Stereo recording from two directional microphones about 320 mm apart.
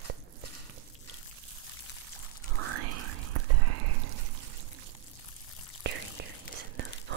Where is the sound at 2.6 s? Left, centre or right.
Right.